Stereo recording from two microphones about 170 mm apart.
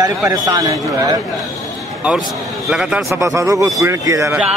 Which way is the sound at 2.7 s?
5° right (ahead or behind).